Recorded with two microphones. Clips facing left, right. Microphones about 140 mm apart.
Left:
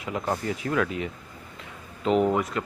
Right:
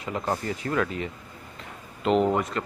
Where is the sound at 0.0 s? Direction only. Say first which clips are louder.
Even; 5° left (ahead or behind).